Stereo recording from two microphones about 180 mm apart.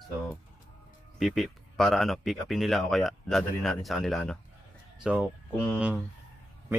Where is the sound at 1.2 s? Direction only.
Centre (ahead or behind).